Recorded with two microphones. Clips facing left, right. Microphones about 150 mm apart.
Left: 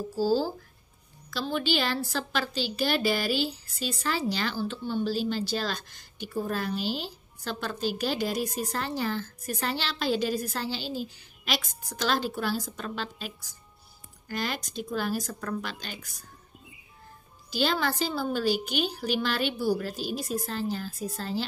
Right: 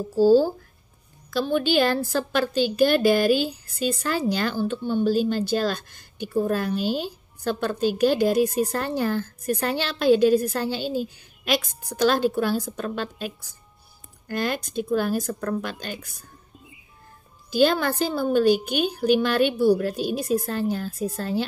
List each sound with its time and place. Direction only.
0.1 s a woman's voice: 55° right (ahead or behind)
17.5 s a woman's voice: 50° right (ahead or behind)